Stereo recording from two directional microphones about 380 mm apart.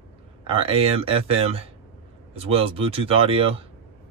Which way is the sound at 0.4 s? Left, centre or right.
Centre.